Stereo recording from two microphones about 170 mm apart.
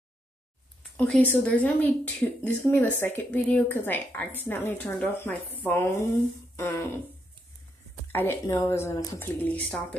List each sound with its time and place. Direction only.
0.9 s speech: 10° left (ahead or behind)
6.5 s music: 15° left (ahead or behind)
8.1 s speech: 15° left (ahead or behind)